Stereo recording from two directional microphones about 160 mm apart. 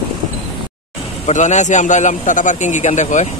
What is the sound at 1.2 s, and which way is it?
A man's voice, 50° left (ahead or behind).